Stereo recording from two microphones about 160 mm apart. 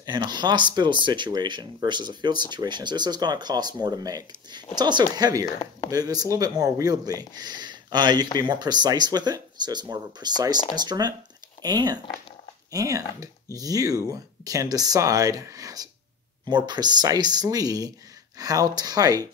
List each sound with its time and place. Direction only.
0.0 s speech: 25° right (ahead or behind)